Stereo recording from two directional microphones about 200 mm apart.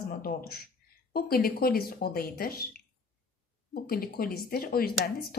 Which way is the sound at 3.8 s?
50° left (ahead or behind).